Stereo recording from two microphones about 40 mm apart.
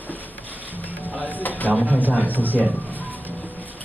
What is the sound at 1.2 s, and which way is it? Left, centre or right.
Speech, left.